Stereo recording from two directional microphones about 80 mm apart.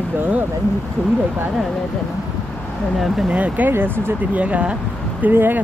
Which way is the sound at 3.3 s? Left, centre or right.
Centre.